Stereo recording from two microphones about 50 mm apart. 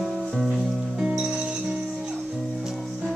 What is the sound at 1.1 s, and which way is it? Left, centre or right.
Music, right.